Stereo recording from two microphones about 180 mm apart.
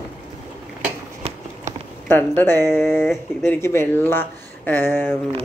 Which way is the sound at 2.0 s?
10° left (ahead or behind).